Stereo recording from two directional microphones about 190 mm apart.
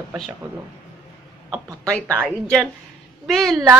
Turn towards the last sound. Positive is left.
turn(degrees=0)  # may be behind; listen again after turning